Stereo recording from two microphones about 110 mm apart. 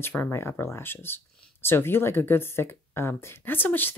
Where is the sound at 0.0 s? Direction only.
20° left (ahead or behind).